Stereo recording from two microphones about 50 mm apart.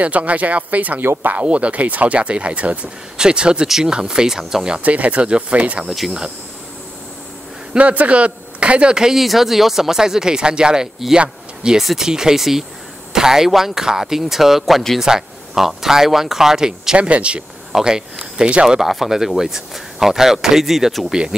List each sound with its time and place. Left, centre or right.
0.0 s speech: right
3.2 s speech: centre
3.6 s speech: centre
4.8 s speech: right
5.9 s speech: centre
7.7 s a man's voice: right; by 9.2 s centre
9.2 s speech: centre
11.8 s speech: centre
18.8 s speech: centre
21.1 s speech: centre